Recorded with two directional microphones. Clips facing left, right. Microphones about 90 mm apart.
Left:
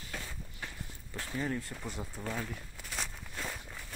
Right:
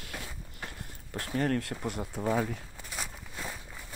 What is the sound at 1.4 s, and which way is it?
Speech, 75° right (ahead or behind).